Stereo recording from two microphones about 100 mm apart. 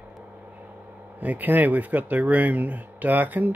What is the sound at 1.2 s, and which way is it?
Speech, 15° right (ahead or behind).